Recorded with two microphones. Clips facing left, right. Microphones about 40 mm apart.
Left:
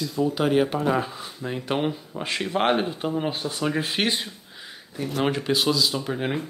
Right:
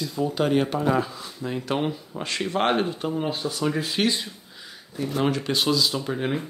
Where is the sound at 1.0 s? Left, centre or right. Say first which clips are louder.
Left 1 dB; left.